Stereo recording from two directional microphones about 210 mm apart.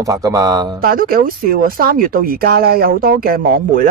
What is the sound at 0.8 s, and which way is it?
Speech, 45° right (ahead or behind).